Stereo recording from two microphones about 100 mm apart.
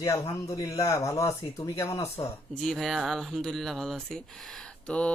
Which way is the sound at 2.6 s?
5° left (ahead or behind).